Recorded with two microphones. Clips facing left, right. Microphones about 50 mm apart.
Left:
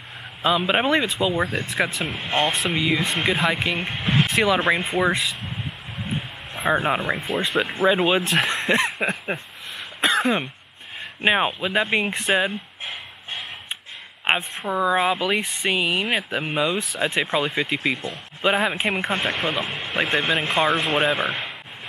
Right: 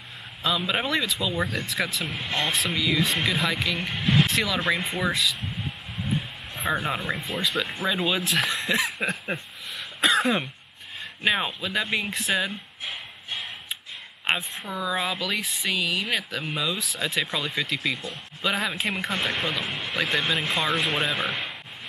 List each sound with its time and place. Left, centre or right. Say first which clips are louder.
0.4 s speech: left 6 dB; left
6.0 s roaring cats: right 1 dB; left
7.5 s speech: left 10 dB; left
9.0 s a sound: left 3 dB; centre
9.8 s cough: left 1 dB; left
10.2 s a sound: left 2 dB; centre
11.1 s speech: left 5 dB; left
14.3 s a sound: left 4 dB; left
14.7 s speech: left 8 dB; left